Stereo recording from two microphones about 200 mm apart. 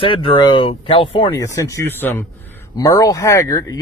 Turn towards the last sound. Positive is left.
turn(degrees=20)  # may be behind; listen again after turning